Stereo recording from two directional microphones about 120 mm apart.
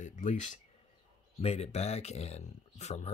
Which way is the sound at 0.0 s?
90° left.